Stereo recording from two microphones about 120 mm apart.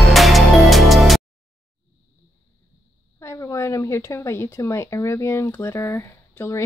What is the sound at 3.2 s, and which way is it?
Speech, 25° left (ahead or behind).